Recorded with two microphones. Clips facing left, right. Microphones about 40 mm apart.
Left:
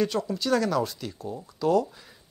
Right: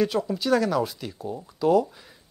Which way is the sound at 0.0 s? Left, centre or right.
Centre.